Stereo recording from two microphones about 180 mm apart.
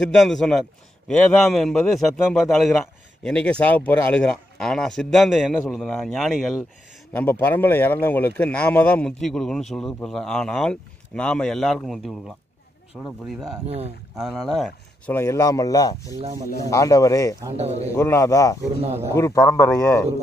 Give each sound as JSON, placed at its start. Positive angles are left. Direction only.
{"t": 0.0, "sound": "speech", "side_deg": 5}
{"t": 7.1, "sound": "speech", "side_deg": 10}
{"t": 13.7, "sound": "speech", "side_deg": -35}
{"t": 14.1, "sound": "speech", "side_deg": 0}
{"t": 15.1, "sound": "a man's voice", "side_deg": 15}
{"t": 17.6, "sound": "speech", "side_deg": -35}
{"t": 17.9, "sound": "a man's voice", "side_deg": 15}